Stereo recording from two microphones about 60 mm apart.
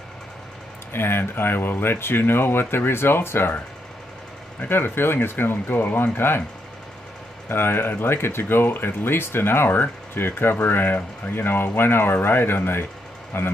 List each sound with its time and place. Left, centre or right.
0.9 s speech: left
7.4 s speech: left